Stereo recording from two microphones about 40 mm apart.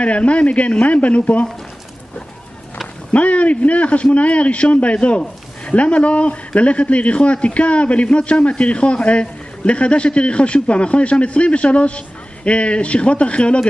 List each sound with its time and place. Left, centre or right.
0.0 s a man's voice: left
3.1 s a man's voice: left